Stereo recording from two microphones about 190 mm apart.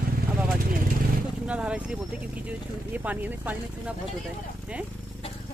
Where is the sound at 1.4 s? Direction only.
5° right (ahead or behind).